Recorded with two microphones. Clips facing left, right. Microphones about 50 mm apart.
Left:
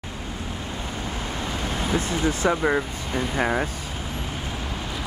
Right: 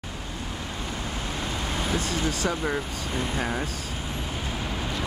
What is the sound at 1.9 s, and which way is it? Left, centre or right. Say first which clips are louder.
Speech: left 5 dB; left.